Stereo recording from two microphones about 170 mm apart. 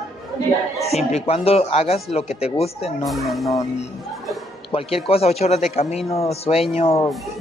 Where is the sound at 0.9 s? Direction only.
40° left (ahead or behind).